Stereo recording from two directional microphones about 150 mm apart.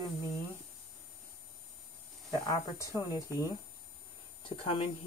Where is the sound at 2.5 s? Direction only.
25° left (ahead or behind).